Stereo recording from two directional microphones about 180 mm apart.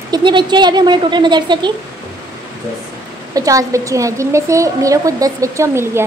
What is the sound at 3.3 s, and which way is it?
A woman's voice, 20° right (ahead or behind).